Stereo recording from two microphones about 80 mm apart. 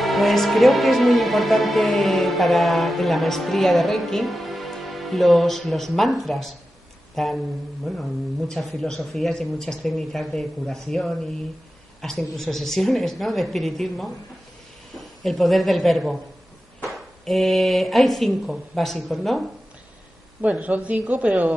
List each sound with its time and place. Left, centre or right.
0.0 s a woman's voice: centre
20.4 s a woman's voice: centre